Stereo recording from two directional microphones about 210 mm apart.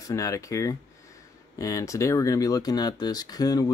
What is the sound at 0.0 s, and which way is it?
Speech, 15° left (ahead or behind).